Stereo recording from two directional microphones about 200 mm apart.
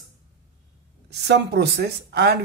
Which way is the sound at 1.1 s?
55° right (ahead or behind).